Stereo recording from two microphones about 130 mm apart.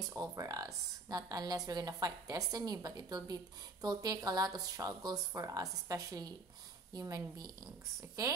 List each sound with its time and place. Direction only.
0.0 s speech: 25° right (ahead or behind)